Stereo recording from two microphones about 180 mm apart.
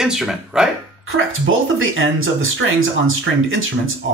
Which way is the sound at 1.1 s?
90° right.